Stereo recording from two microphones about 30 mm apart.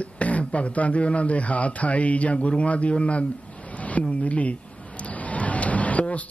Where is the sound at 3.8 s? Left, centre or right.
Left.